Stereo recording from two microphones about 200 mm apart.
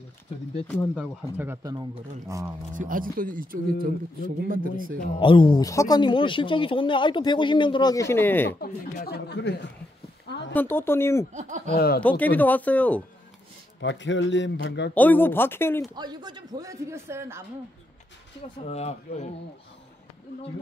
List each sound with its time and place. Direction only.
0.7 s speech: 10° left (ahead or behind)
1.4 s a man's voice: 15° right (ahead or behind)
2.7 s speech: 40° right (ahead or behind)
5.2 s speech: 25° left (ahead or behind)
8.5 s speech: 50° left (ahead or behind)
10.5 s speech: 10° left (ahead or behind)
11.3 s speech: 40° right (ahead or behind)
11.7 s speech: 50° left (ahead or behind)
12.0 s speech: 10° left (ahead or behind)
13.7 s speech: 65° left (ahead or behind)
15.0 s speech: 10° left (ahead or behind)
16.0 s a man's voice: 20° right (ahead or behind)
18.7 s speech: 30° left (ahead or behind)